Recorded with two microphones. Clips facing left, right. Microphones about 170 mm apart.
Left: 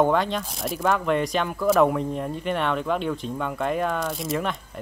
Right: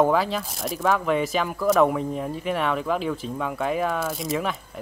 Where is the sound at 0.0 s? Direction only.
5° right (ahead or behind).